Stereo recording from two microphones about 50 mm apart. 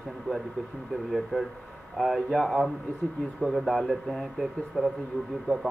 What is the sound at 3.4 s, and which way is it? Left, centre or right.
A man's voice, centre.